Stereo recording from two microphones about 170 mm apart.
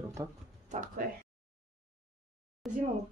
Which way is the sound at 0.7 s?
50° right (ahead or behind).